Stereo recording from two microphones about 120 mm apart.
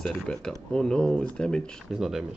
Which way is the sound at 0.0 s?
5° left (ahead or behind).